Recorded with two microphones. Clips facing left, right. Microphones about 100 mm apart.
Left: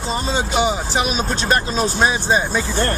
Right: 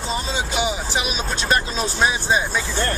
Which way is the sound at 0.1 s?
40° left (ahead or behind).